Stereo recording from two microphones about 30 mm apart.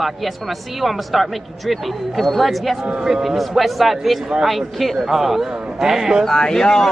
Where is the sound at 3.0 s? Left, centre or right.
Centre.